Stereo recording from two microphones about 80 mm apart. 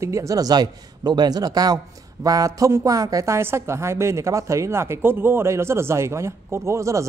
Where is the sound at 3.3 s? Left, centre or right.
Right.